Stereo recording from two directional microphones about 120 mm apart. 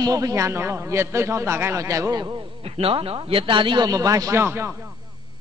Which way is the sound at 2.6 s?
55° right (ahead or behind).